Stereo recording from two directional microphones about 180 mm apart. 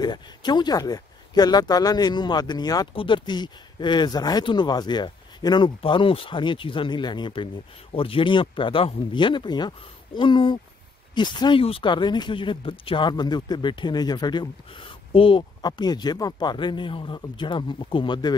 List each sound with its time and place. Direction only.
0.0 s speech: 25° left (ahead or behind)